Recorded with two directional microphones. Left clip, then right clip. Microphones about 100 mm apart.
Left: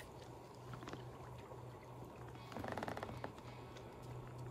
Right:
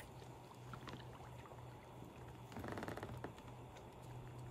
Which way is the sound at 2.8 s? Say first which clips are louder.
Left 2 dB; 70° left (ahead or behind).